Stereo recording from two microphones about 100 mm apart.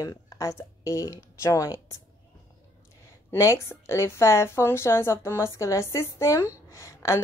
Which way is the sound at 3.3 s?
30° left (ahead or behind).